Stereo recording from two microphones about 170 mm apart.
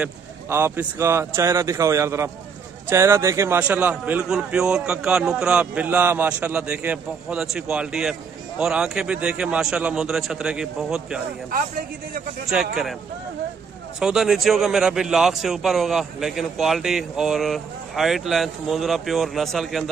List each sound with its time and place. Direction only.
0.0 s a man's voice: 15° right (ahead or behind)
12.4 s a man's voice: centre (ahead or behind)
13.9 s a man's voice: 5° right (ahead or behind)